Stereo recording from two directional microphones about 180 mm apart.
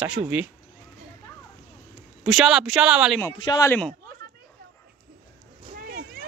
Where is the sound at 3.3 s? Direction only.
20° left (ahead or behind).